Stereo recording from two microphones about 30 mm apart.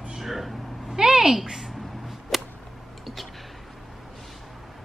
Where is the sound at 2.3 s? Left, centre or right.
Centre.